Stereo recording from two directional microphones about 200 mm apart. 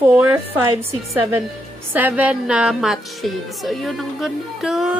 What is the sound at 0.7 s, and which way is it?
Speech, 30° right (ahead or behind).